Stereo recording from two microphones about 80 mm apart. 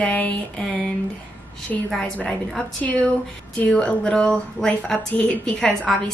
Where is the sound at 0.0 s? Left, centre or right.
Centre.